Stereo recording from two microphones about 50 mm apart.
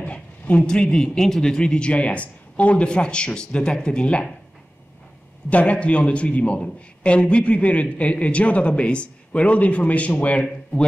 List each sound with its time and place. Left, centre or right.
0.0 s a man's voice: left
5.5 s a man's voice: left